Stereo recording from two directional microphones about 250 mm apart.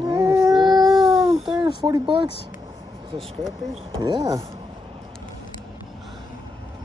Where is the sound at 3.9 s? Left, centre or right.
Centre.